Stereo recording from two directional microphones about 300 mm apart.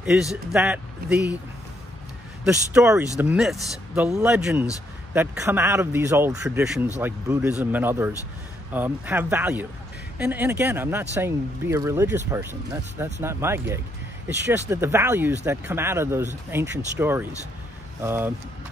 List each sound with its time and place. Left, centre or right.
0.0 s speech: centre
1.0 s speech: right
2.4 s speech: centre